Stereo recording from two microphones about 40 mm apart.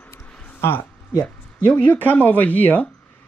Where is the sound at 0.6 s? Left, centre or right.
Left.